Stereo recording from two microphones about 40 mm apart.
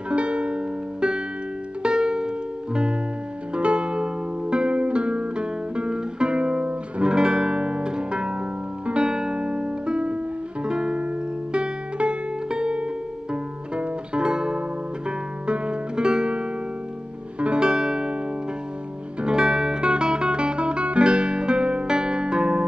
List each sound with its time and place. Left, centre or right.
0.1 s music: right
7.1 s music: centre
19.2 s guitar: centre